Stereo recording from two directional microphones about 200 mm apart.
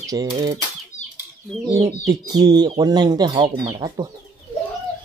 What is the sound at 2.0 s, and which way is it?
Speech, 20° right (ahead or behind).